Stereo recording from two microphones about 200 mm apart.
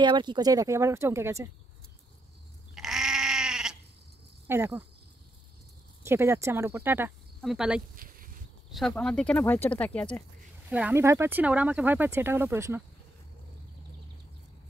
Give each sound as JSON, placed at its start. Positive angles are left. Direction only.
{"t": 0.0, "sound": "speech", "side_deg": -20}
{"t": 2.7, "sound": "goat", "side_deg": 0}
{"t": 4.5, "sound": "speech", "side_deg": -10}
{"t": 6.0, "sound": "speech", "side_deg": -15}
{"t": 7.9, "sound": "a sound", "side_deg": -45}
{"t": 8.7, "sound": "speech", "side_deg": 0}
{"t": 10.7, "sound": "speech", "side_deg": -10}